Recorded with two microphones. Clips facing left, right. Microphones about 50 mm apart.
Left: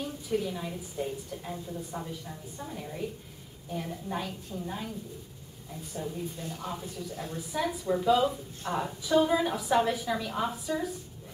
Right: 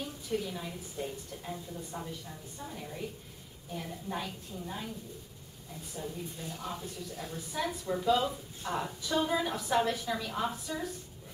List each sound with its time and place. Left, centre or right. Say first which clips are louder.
0.0 s a woman's voice: left 4 dB; centre
5.9 s a woman's voice: left 4 dB; centre
6.3 s a woman's voice: left 3 dB; centre